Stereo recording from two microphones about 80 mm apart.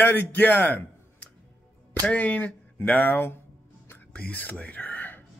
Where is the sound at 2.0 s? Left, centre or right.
Centre.